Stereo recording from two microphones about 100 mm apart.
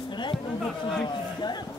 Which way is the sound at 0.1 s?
50° left (ahead or behind).